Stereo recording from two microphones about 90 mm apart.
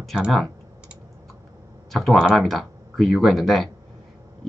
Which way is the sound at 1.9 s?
Centre (ahead or behind).